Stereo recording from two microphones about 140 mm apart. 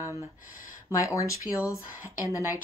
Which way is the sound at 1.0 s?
20° left (ahead or behind).